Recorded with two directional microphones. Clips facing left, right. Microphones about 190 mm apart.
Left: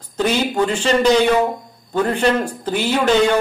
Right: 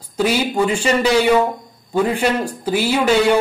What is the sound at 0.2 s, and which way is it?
A man's voice, 10° right (ahead or behind).